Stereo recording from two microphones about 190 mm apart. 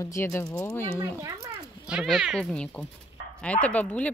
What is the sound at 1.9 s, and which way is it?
A child's voice, centre (ahead or behind).